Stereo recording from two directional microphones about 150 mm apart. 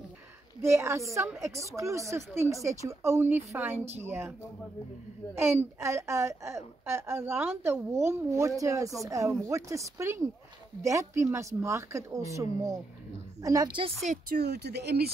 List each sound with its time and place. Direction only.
0.6 s a woman's voice: 20° right (ahead or behind)
5.3 s a woman's voice: 15° right (ahead or behind); by 13.9 s 30° right (ahead or behind)
14.0 s speech: 55° right (ahead or behind)
14.4 s speech: 90° right